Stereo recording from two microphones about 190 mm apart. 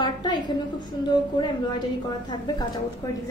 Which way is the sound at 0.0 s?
25° left (ahead or behind).